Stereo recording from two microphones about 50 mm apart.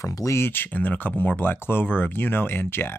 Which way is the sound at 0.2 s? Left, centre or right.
Left.